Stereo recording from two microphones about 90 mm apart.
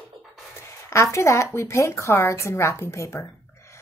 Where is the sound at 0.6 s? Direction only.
30° left (ahead or behind).